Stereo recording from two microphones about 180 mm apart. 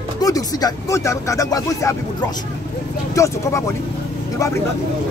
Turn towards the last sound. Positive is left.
turn(degrees=20)  # may be behind; listen again after turning